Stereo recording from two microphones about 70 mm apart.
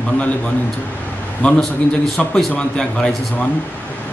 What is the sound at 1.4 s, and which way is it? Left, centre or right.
Speech, centre.